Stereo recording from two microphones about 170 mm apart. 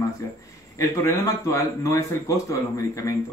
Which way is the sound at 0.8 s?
20° left (ahead or behind).